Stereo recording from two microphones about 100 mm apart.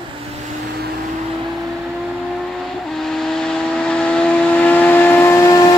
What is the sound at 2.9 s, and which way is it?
Vehicle, 5° left (ahead or behind).